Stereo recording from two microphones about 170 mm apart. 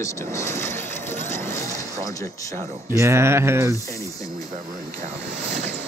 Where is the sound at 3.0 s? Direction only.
15° right (ahead or behind).